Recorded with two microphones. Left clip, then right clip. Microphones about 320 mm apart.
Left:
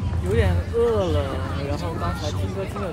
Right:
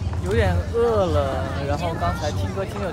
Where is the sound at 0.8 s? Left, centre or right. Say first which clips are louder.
Even; centre.